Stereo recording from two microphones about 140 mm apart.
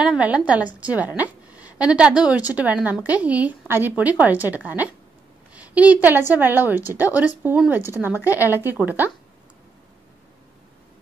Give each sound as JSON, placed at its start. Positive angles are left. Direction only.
{"t": 0.0, "sound": "a woman's voice", "side_deg": -5}